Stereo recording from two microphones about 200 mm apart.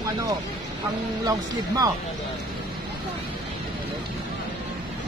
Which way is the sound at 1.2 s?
20° right (ahead or behind).